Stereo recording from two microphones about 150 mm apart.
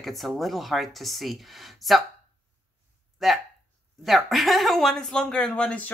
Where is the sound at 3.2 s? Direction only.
Centre (ahead or behind).